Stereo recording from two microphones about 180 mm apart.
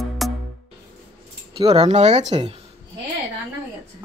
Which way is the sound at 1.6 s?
35° right (ahead or behind).